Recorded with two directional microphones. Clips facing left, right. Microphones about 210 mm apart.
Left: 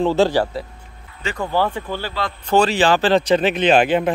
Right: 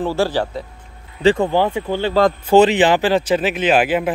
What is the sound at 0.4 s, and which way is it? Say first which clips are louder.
Speech: left 1 dB; 5° left (ahead or behind).